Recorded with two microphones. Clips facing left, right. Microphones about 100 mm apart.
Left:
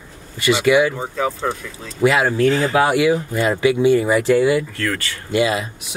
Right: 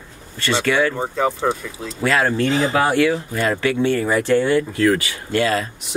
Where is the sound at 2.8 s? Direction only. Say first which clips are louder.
Left 1 dB; 10° left (ahead or behind).